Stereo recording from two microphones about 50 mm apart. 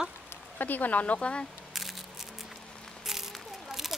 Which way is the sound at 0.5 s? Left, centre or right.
Left.